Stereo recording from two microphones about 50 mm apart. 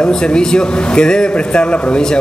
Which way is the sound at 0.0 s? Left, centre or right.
Centre.